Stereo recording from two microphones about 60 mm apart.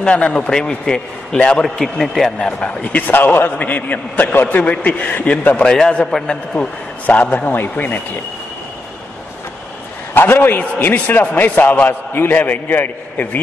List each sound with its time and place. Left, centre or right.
0.0 s a man's voice: centre
2.6 s a man's voice: left
3.1 s a man's voice: left
5.7 s a man's voice: centre; by 8.0 s left
10.1 s a man's voice: left